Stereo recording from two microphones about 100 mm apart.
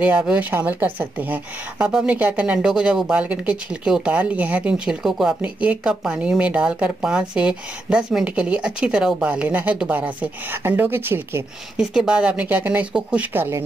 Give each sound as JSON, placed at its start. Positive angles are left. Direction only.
{"t": 0.0, "sound": "speech", "side_deg": -10}
{"t": 11.7, "sound": "speech", "side_deg": -5}